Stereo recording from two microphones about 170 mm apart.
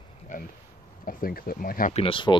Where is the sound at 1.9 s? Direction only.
30° left (ahead or behind).